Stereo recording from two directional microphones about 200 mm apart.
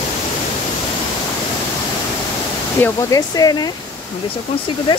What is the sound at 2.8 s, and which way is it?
Speech, 15° left (ahead or behind).